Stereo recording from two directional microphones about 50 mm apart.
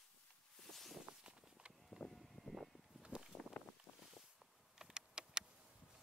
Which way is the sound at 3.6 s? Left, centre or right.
Left.